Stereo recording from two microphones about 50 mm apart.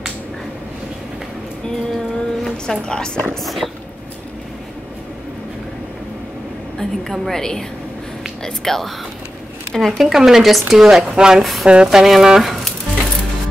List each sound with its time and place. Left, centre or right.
2.4 s music: centre
2.8 s a woman's voice: centre
3.4 s speech: centre
6.8 s a woman's voice: centre